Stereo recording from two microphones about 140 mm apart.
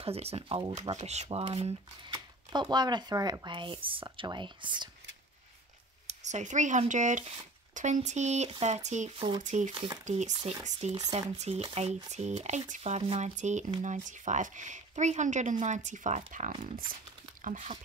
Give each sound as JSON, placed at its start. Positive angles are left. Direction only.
{"t": 0.0, "sound": "speech", "side_deg": -45}
{"t": 0.7, "sound": "speech", "side_deg": -50}
{"t": 1.4, "sound": "speech", "side_deg": -40}
{"t": 6.0, "sound": "speech", "side_deg": -55}
{"t": 9.7, "sound": "speech", "side_deg": -35}
{"t": 10.0, "sound": "speech", "side_deg": -55}
{"t": 16.6, "sound": "speech", "side_deg": -80}
{"t": 17.4, "sound": "speech", "side_deg": -60}